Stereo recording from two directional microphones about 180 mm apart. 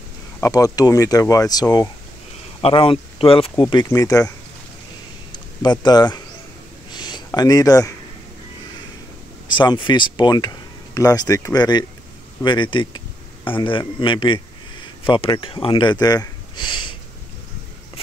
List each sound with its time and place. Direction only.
0.4 s speech: 20° left (ahead or behind)
5.3 s speech: 25° left (ahead or behind)
6.9 s a sound: 25° left (ahead or behind)
9.5 s a man's voice: 25° left (ahead or behind)